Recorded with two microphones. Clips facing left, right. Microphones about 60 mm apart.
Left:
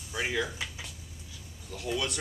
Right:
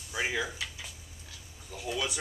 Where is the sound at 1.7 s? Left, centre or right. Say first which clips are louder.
Left 1 dB; centre.